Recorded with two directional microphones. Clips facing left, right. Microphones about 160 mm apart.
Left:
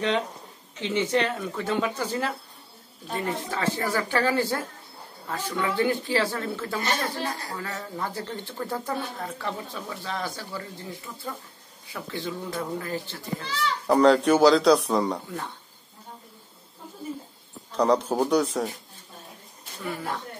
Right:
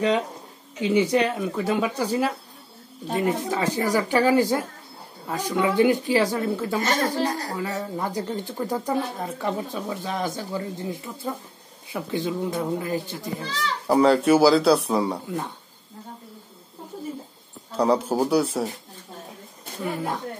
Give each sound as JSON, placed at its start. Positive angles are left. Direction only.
{"t": 0.7, "sound": "speech", "side_deg": -10}
{"t": 6.8, "sound": "speech", "side_deg": -40}
{"t": 7.5, "sound": "speech", "side_deg": -15}
{"t": 13.4, "sound": "speech", "side_deg": -40}
{"t": 13.8, "sound": "speech", "side_deg": -5}
{"t": 17.7, "sound": "speech", "side_deg": -5}